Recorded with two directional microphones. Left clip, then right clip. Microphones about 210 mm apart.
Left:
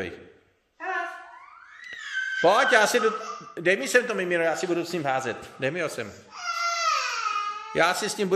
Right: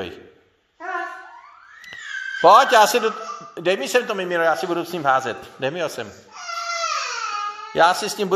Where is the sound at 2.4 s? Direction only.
5° left (ahead or behind).